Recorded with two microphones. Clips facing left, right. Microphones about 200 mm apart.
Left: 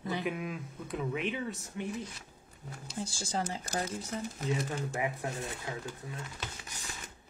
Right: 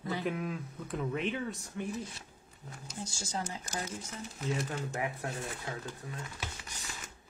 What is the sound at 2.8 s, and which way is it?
Speech, 30° left (ahead or behind).